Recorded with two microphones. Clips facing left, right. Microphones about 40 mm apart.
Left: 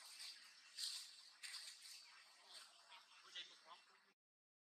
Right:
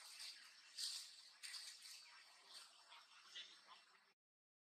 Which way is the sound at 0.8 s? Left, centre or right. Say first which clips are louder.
Even; left.